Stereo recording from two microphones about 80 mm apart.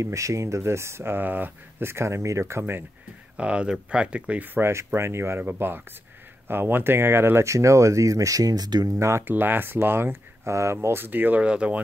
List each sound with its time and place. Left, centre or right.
0.0 s speech: right
3.3 s speech: centre
4.6 s speech: right
8.9 s speech: right
9.2 s speech: right